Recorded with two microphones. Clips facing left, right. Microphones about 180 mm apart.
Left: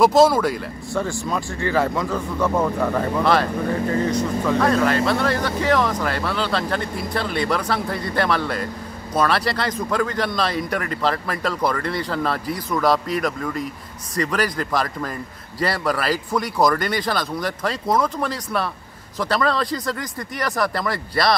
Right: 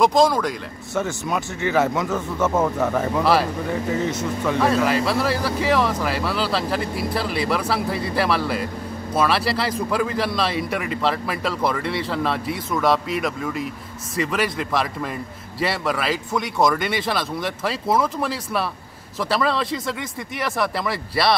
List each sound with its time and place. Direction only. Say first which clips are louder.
0.0 s a man's voice: left 2 dB; 5° left (ahead or behind)
1.0 s speech: even; 20° right (ahead or behind)
1.6 s a man's voice: right 1 dB; 5° right (ahead or behind)
4.1 s speech: left 3 dB; 25° right (ahead or behind)
4.6 s a man's voice: even; 5° right (ahead or behind)